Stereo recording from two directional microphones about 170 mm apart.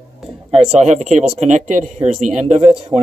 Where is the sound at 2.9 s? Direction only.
10° right (ahead or behind).